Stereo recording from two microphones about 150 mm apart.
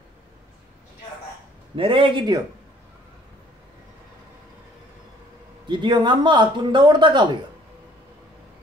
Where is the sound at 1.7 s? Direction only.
35° right (ahead or behind).